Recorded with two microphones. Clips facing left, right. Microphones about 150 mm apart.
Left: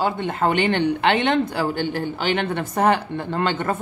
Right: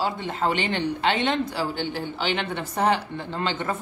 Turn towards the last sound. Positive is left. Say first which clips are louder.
# left 5 dB
turn(degrees=55)  # may be behind; listen again after turning